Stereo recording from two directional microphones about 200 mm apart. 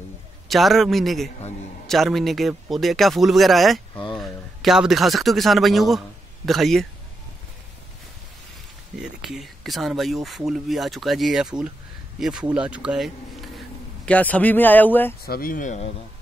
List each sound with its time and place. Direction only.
0.5 s speech: centre (ahead or behind)
3.9 s a sound: 25° left (ahead or behind)
4.2 s a man's voice: centre (ahead or behind)
9.0 s speech: centre (ahead or behind)
15.2 s speech: 45° left (ahead or behind)